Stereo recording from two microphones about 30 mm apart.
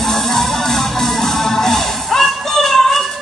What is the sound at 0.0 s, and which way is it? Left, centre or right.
Music, centre.